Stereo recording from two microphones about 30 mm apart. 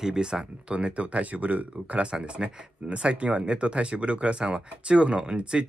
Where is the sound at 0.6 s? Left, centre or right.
Right.